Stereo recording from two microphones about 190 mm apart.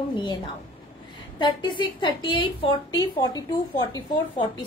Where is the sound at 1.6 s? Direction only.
25° left (ahead or behind).